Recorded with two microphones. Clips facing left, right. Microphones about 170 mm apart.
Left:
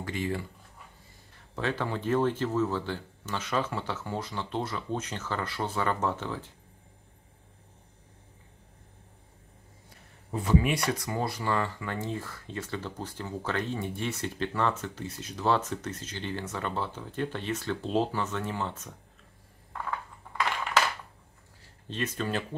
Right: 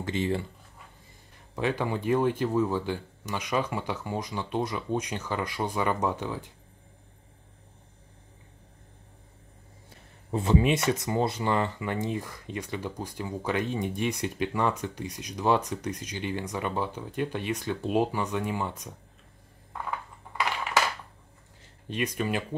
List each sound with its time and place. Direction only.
0.0 s speech: 25° right (ahead or behind)
1.5 s speech: 15° right (ahead or behind)
10.3 s speech: 25° right (ahead or behind)
21.8 s speech: 15° right (ahead or behind)